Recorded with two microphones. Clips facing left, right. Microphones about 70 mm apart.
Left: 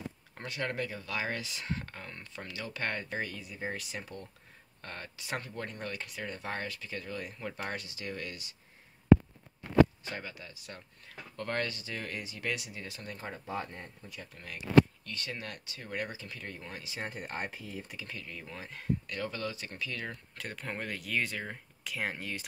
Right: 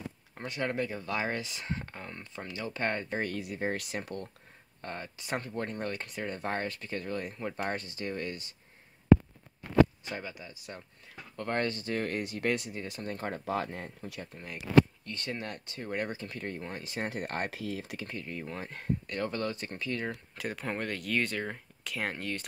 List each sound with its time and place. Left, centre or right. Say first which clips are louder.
0.4 s speech: right 3 dB; right
3.2 s speech: right 5 dB; right
4.8 s speech: right 3 dB; centre; by 7.3 s right
7.3 s speech: right 4 dB; right
10.0 s speech: right 2 dB; centre
11.6 s speech: right 6 dB; right
13.2 s speech: right 5 dB; right
14.3 s speech: right 2 dB; right
15.0 s speech: right 3 dB; right
17.1 s speech: right 4 dB; right
17.9 s speech: right 5 dB; right
19.7 s speech: right 4 dB; right
20.3 s speech: right 4 dB; centre